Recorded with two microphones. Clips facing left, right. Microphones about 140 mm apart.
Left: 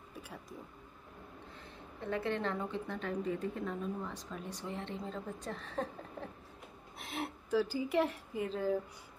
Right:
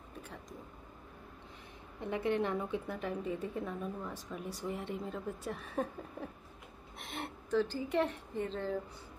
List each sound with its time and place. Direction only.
2.0 s a woman's voice: 15° right (ahead or behind)
7.0 s speech: centre (ahead or behind)